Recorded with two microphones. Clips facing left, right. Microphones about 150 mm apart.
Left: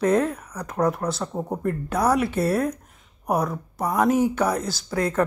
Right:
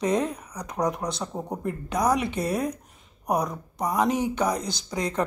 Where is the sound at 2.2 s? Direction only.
15° right (ahead or behind).